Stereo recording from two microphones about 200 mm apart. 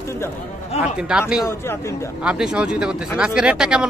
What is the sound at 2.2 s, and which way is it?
Speech, 5° right (ahead or behind).